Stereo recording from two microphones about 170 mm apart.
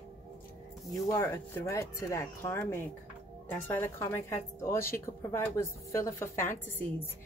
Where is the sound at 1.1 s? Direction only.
15° left (ahead or behind).